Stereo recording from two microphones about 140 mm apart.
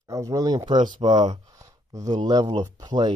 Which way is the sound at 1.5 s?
25° right (ahead or behind).